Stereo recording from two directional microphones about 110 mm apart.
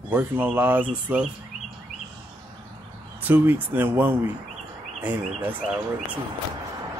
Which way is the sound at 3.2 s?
15° right (ahead or behind).